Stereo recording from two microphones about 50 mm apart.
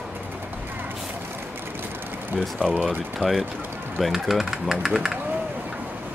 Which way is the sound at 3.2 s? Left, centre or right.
Centre.